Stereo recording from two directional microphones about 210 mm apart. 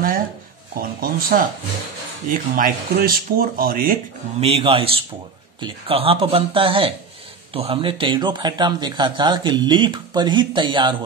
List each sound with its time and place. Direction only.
0.7 s speech: 45° right (ahead or behind)
4.4 s speech: 30° right (ahead or behind)